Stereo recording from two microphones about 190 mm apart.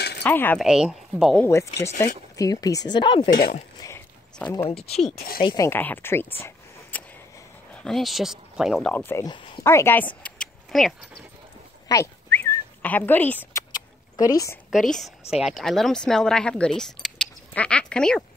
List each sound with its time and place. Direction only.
0.2 s speech: 10° left (ahead or behind)
0.7 s speech: 5° right (ahead or behind)
1.4 s speech: 15° left (ahead or behind)
3.8 s a sound: 15° left (ahead or behind)
5.4 s speech: 25° left (ahead or behind)
5.7 s speech: 10° left (ahead or behind)
7.8 s speech: centre (ahead or behind)
11.9 s a sound: 10° left (ahead or behind)
14.7 s speech: centre (ahead or behind)